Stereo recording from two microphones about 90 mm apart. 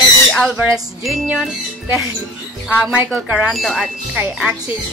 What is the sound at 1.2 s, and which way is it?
Speech, 10° right (ahead or behind).